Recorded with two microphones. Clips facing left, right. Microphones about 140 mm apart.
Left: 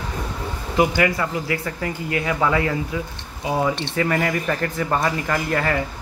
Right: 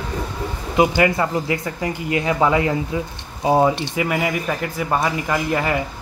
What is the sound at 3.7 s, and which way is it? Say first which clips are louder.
Speech: even; 10° right (ahead or behind).